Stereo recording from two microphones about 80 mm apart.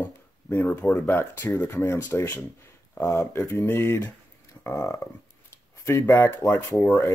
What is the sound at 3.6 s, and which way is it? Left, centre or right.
Speech, left.